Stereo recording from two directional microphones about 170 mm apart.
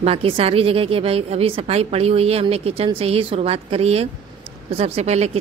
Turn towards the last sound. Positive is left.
turn(degrees=-40)  # may be behind; listen again after turning